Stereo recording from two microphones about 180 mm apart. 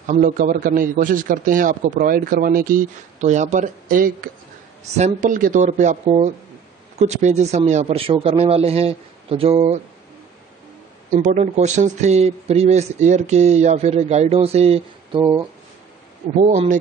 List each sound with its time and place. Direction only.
0.0 s a man's voice: 45° right (ahead or behind)
11.1 s speech: 45° right (ahead or behind)